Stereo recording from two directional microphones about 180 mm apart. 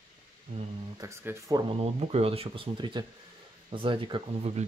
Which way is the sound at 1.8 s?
35° right (ahead or behind).